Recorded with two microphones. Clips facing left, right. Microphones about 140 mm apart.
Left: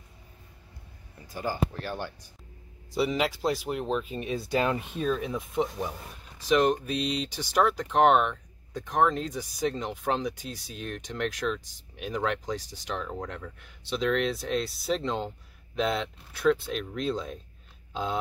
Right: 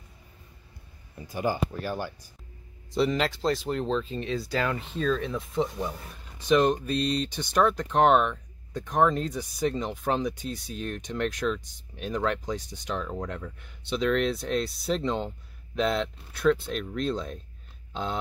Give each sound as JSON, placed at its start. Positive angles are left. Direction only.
{"t": 1.3, "sound": "speech", "side_deg": -15}
{"t": 2.9, "sound": "speech", "side_deg": 5}
{"t": 6.4, "sound": "speech", "side_deg": 0}